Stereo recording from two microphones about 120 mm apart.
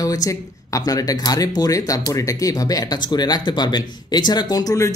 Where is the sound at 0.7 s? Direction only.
30° left (ahead or behind).